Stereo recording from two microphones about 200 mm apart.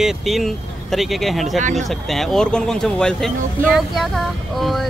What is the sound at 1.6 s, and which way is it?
Speech, 35° right (ahead or behind).